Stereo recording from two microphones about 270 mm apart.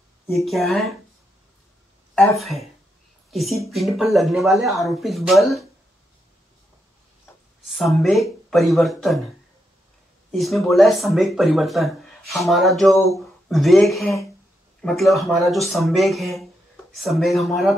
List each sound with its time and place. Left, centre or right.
0.5 s speech: centre
2.1 s speech: centre
7.6 s speech: centre
10.3 s speech: centre